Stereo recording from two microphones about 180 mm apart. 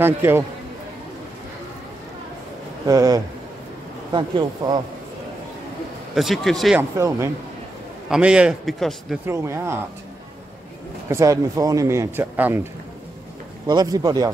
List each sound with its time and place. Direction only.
0.0 s speech: 10° right (ahead or behind)
2.9 s speech: 20° right (ahead or behind)
6.1 s a man's voice: centre (ahead or behind)
6.8 s a man's voice: 15° right (ahead or behind); by 9.2 s centre (ahead or behind)
9.2 s speech: 15° right (ahead or behind)
11.1 s speech: 15° right (ahead or behind)
13.7 s speech: 20° right (ahead or behind)